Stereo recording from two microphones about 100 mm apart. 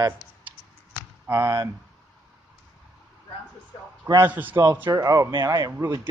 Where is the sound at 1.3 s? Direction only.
35° right (ahead or behind).